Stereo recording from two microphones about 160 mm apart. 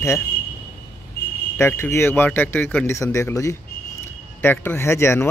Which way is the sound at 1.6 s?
15° left (ahead or behind).